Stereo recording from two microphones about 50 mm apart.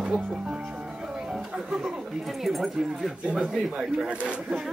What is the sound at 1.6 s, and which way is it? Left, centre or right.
Speech, centre.